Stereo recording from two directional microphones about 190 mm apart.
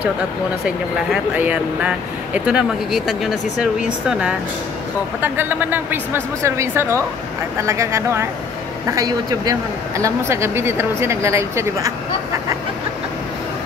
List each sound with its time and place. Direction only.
0.7 s a man's voice: 5° right (ahead or behind)